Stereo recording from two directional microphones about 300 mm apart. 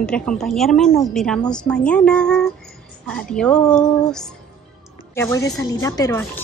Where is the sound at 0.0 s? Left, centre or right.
Centre.